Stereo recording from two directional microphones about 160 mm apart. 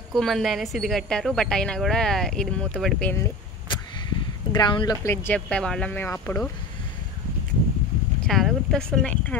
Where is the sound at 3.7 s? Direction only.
30° left (ahead or behind).